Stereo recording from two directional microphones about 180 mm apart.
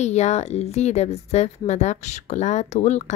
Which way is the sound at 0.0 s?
40° left (ahead or behind).